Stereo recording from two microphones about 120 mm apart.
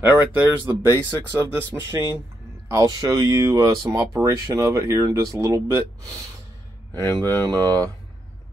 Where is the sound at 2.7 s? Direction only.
35° right (ahead or behind).